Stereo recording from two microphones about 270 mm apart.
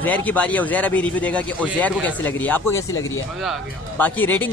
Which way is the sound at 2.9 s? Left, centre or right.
Left.